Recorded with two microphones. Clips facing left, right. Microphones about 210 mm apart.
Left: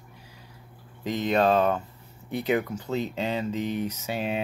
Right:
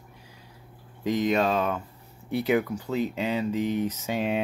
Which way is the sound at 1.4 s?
35° left (ahead or behind).